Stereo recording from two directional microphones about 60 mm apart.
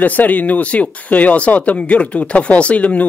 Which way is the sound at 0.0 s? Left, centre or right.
Left.